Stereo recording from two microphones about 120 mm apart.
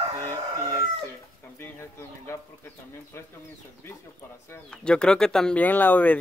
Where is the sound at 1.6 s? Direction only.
20° left (ahead or behind).